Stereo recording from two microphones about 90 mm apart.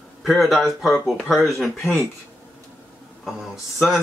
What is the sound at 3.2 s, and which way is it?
Speech, centre (ahead or behind).